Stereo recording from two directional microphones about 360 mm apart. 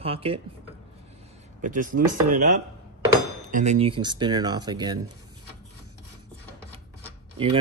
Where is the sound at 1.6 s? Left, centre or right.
Right.